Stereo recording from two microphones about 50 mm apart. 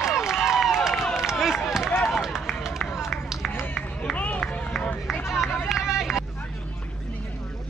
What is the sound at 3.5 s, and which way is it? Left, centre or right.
Run, left.